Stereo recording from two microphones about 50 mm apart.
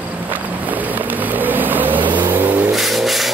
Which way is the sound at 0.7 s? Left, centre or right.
Right.